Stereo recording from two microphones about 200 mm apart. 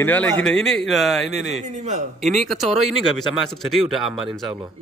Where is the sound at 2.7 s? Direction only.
Centre (ahead or behind).